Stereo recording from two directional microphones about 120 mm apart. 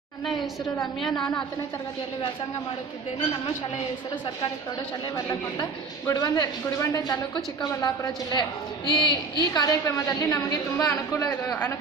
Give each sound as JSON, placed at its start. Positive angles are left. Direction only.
{"t": 1.0, "sound": "a woman's voice", "side_deg": 5}
{"t": 5.1, "sound": "a man's voice", "side_deg": 30}